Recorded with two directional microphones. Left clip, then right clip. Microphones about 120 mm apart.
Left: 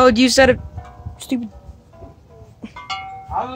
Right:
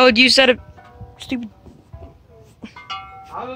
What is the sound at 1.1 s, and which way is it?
Music, 15° left (ahead or behind).